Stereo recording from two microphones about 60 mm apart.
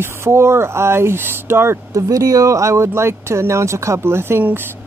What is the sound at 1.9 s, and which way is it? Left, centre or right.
Speech, right.